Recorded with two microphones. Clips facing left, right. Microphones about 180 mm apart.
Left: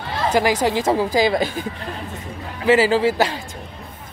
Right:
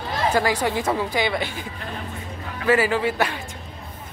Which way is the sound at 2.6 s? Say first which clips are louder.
Left 4 dB; 25° left (ahead or behind).